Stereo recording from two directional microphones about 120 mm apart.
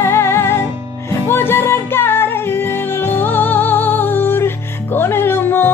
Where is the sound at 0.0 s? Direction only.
20° left (ahead or behind).